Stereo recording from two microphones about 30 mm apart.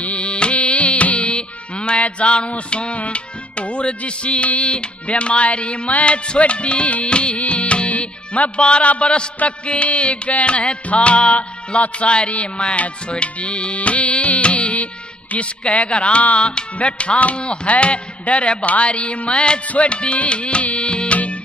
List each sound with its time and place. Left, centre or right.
0.0 s carnatic music: left
1.3 s music: left
2.0 s speech: left
3.0 s music: left
4.6 s speech: left
7.3 s music: left
8.8 s music: left
9.4 s a sound: left
9.9 s speech: left
13.7 s music: left
16.7 s speech: left